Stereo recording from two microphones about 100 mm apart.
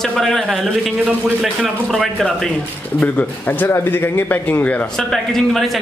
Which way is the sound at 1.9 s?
5° left (ahead or behind).